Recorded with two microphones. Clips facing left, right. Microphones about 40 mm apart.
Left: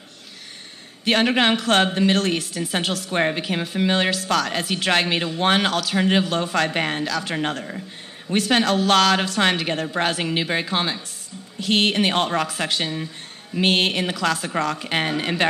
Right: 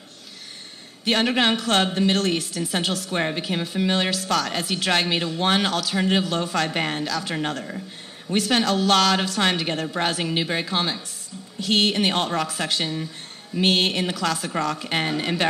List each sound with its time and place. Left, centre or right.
1.1 s speech: left
1.6 s speech: left
3.4 s speech: left
6.7 s speech: centre